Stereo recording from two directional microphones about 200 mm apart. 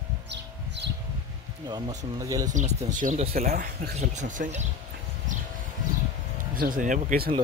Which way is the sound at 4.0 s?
35° right (ahead or behind).